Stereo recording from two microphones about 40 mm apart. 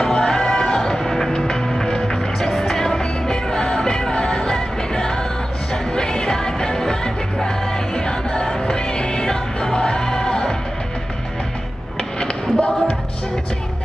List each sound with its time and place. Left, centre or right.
0.0 s music: centre
12.5 s music: left